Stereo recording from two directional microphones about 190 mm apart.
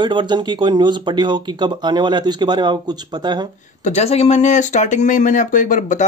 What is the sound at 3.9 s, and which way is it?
Speech, 35° left (ahead or behind).